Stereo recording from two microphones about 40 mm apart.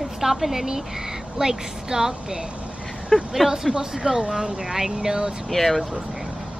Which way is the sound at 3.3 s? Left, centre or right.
Centre.